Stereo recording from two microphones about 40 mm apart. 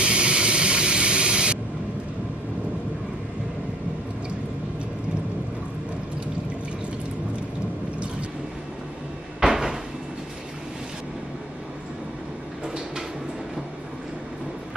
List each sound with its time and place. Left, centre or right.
0.0 s spray: right
9.4 s cupboard open or close: centre
12.6 s a sound: centre